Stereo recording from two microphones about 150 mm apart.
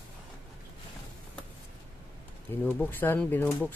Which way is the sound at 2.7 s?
15° left (ahead or behind).